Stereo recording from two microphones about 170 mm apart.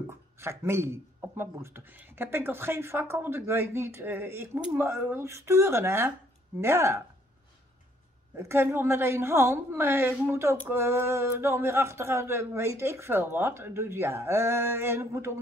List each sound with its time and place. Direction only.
0.0 s speech: 15° right (ahead or behind)
8.4 s speech: 15° right (ahead or behind)